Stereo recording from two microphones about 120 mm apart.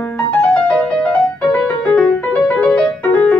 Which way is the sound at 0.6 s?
10° left (ahead or behind).